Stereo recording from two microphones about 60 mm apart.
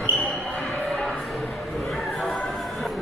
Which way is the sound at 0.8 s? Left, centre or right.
Centre.